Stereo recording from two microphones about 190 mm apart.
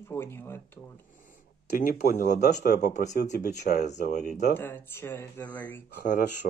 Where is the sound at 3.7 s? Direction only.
50° left (ahead or behind).